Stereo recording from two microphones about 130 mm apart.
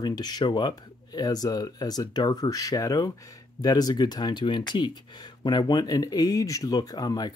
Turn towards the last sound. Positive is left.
turn(degrees=30)  # may be behind; listen again after turning